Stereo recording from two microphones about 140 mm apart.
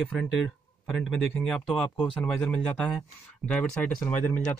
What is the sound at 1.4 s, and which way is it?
Speech, 5° left (ahead or behind).